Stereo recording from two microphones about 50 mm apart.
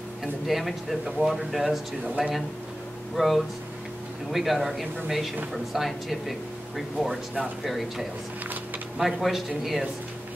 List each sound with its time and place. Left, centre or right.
0.2 s speech: centre